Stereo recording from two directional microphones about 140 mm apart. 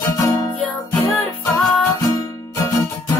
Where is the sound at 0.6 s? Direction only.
10° left (ahead or behind).